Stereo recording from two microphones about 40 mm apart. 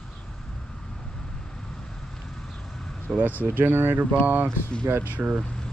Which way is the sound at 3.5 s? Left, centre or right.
Right.